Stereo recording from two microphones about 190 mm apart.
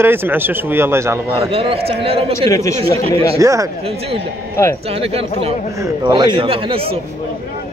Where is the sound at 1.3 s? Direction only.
30° right (ahead or behind).